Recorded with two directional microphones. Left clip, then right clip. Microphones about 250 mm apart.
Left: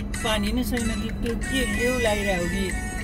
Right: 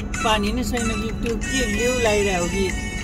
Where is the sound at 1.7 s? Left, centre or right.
Left.